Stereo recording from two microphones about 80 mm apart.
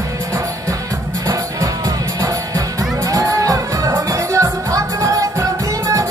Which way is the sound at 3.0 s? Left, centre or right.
Right.